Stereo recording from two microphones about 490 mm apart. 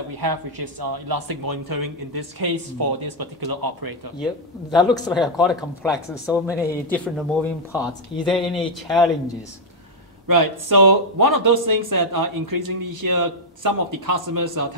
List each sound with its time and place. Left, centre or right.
0.2 s speech: right
4.2 s speech: centre
10.2 s speech: right